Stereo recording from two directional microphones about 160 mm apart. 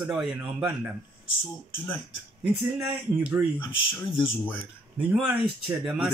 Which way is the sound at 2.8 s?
5° right (ahead or behind).